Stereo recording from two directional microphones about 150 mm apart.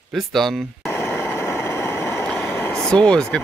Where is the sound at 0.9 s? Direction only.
15° left (ahead or behind).